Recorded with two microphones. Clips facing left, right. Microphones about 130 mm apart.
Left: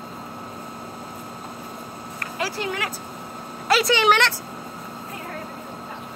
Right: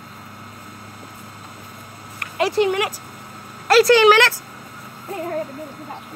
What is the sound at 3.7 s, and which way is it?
Speech, centre (ahead or behind).